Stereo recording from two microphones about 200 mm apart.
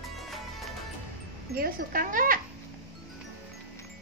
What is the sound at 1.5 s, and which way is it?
Dog, 45° right (ahead or behind).